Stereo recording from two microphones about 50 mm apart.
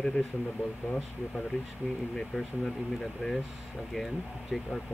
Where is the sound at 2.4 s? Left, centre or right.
Centre.